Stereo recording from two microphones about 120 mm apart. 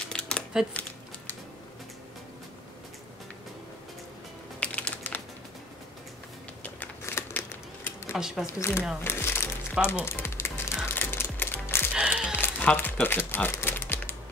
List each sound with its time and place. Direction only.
0.1 s a sound: 5° left (ahead or behind)
4.6 s typing: 10° left (ahead or behind)
6.6 s a sound: 15° left (ahead or behind)
8.1 s speech: 5° right (ahead or behind)
8.5 s speech: 20° left (ahead or behind)
10.0 s music: 20° left (ahead or behind)
11.9 s music: 10° right (ahead or behind)
12.4 s music: 15° left (ahead or behind)
13.0 s speech: 15° left (ahead or behind)